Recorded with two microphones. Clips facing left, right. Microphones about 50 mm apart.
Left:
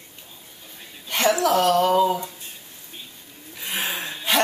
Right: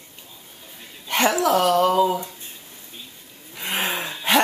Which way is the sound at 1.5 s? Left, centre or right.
Centre.